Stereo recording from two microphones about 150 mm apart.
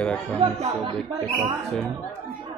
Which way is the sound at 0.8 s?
30° right (ahead or behind).